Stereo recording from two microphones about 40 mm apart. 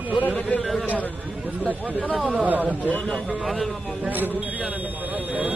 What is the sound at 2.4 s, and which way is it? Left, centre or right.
Speech, right.